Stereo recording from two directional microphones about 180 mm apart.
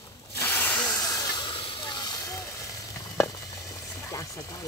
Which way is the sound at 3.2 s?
15° left (ahead or behind).